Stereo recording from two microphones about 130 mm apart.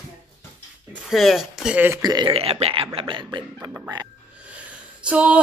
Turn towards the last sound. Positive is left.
turn(degrees=-10)  # may be behind; listen again after turning